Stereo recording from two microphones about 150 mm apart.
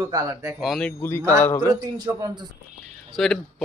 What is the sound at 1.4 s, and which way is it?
Speech, 15° left (ahead or behind).